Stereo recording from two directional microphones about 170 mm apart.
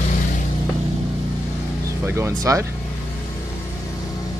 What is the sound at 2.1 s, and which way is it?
Music, 15° right (ahead or behind).